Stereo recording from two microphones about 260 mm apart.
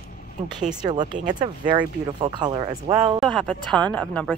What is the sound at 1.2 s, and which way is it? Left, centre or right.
Speech, right.